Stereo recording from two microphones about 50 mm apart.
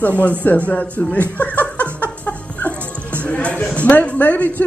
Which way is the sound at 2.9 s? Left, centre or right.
Left.